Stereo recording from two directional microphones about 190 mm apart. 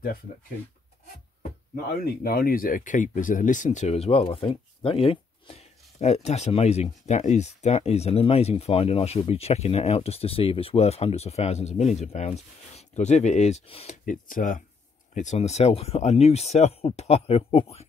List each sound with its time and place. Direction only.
2.0 s speech: 50° left (ahead or behind); by 17.8 s 30° left (ahead or behind)